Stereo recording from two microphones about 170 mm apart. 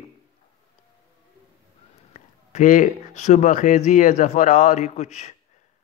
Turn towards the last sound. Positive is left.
turn(degrees=45)  # may be behind; listen again after turning